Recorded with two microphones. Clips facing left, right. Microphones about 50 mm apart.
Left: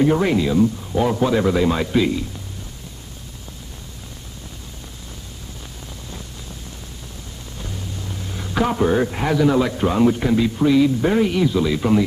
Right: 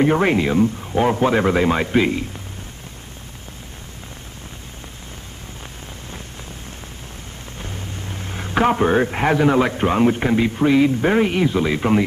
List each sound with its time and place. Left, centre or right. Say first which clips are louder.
0.0 s a man's voice: right 1 dB; right
7.5 s a man's voice: even; right